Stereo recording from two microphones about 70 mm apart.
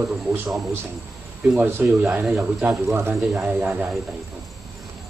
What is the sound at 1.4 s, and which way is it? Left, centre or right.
Speech, right.